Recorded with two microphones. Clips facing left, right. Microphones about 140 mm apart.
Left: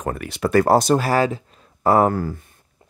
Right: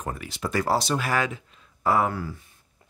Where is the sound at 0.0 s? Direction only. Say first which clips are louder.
Left 8 dB; 60° left (ahead or behind).